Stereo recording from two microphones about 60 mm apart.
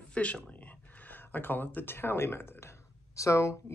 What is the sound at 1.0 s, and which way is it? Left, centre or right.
Speech, left.